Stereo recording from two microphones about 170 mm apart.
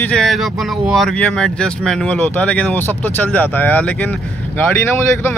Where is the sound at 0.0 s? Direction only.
Centre (ahead or behind).